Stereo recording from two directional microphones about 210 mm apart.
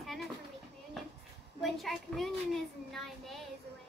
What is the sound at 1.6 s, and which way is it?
A child's voice, centre (ahead or behind).